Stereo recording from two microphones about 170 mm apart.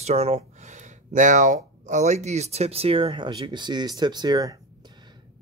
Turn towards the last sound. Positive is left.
turn(degrees=-25)  # may be behind; listen again after turning